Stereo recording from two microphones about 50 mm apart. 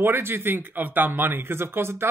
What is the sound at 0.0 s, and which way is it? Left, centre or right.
Speech, right.